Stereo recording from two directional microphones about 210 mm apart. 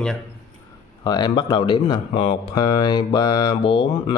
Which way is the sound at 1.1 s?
20° left (ahead or behind).